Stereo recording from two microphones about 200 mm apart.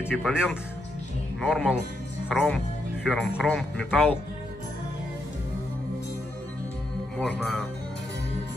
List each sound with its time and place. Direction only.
0.1 s speech: centre (ahead or behind)
7.2 s speech: 10° left (ahead or behind)